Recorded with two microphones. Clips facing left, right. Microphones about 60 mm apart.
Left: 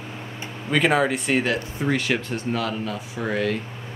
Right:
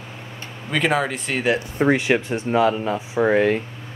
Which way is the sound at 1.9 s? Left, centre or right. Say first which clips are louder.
Right 4 dB; centre.